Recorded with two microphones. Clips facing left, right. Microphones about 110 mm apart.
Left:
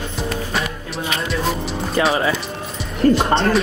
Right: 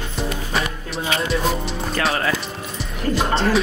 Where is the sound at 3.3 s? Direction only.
Centre (ahead or behind).